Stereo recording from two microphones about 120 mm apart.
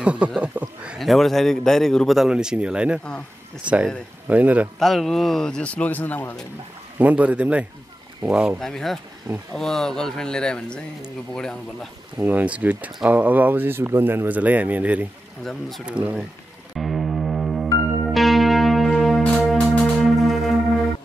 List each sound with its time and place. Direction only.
0.0 s speech: 10° right (ahead or behind)
0.9 s a man's voice: centre (ahead or behind)
4.7 s a man's voice: centre (ahead or behind)
7.0 s speech: 10° right (ahead or behind)
8.5 s a man's voice: 5° left (ahead or behind)
9.3 s speech: 30° right (ahead or behind)
9.6 s a man's voice: 5° left (ahead or behind)
12.2 s speech: 15° right (ahead or behind)
16.7 s music: centre (ahead or behind)